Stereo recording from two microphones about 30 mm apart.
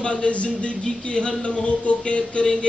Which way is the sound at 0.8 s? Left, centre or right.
Left.